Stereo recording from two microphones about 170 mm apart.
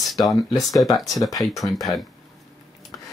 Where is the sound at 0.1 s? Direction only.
Centre (ahead or behind).